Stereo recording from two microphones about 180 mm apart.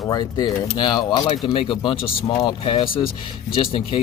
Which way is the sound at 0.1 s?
20° left (ahead or behind).